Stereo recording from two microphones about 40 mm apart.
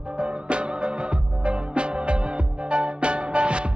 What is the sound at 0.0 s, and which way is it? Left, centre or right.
Music, right.